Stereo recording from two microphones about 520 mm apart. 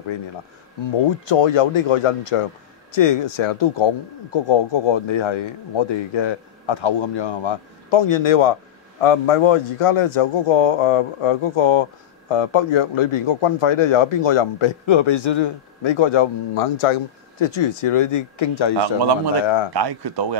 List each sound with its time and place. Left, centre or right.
1.3 s a man's voice: left
19.7 s speech: right